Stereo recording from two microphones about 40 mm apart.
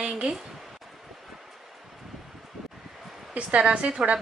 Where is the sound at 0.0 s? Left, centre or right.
Centre.